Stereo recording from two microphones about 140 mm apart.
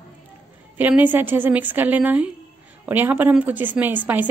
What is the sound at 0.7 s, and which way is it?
A woman's voice, 10° right (ahead or behind).